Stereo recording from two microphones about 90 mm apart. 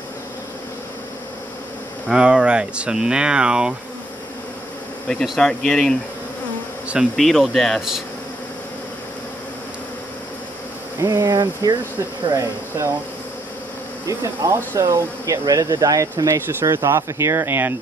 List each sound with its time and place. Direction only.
2.0 s speech: 10° right (ahead or behind)
5.2 s speech: centre (ahead or behind)
5.5 s speech: 10° left (ahead or behind)
7.2 s speech: centre (ahead or behind)
11.0 s speech: 35° right (ahead or behind)
14.0 s speech: 35° right (ahead or behind)